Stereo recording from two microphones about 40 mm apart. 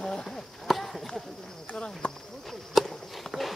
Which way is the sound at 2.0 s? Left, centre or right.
Left.